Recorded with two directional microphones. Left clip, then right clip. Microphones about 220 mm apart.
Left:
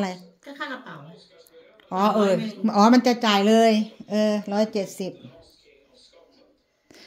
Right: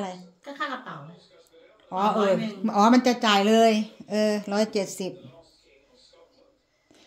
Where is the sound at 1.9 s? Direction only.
20° left (ahead or behind).